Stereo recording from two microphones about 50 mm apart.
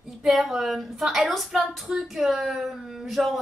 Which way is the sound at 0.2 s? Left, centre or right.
Centre.